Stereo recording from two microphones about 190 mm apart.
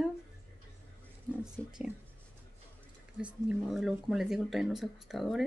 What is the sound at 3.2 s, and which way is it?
Speech, 5° right (ahead or behind).